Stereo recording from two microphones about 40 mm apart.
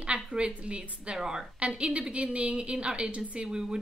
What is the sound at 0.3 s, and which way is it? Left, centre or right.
A woman's voice, right.